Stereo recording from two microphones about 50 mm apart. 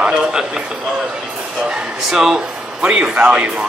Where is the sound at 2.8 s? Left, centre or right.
Centre.